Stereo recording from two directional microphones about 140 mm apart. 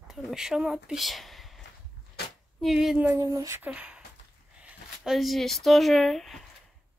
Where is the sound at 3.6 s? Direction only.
5° right (ahead or behind).